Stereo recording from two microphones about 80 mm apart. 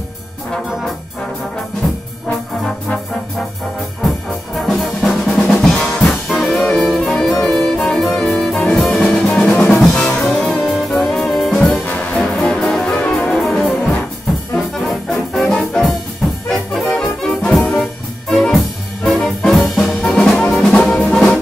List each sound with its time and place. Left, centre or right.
4.6 s music: centre
9.7 s drum: centre
9.9 s music: centre
11.8 s music: centre
12.2 s music: centre
14.9 s brass instrument: centre
16.4 s music: centre